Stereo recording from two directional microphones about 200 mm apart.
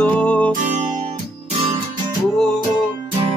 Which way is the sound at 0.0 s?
5° left (ahead or behind).